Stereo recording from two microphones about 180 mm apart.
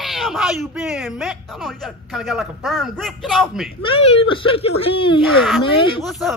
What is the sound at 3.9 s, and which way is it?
A child's voice, 35° left (ahead or behind).